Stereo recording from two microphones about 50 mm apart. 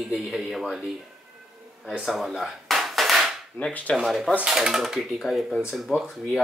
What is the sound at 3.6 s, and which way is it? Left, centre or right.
Speech, left.